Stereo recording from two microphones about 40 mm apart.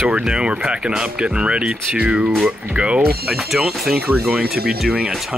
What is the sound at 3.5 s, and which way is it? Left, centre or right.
Speech, centre.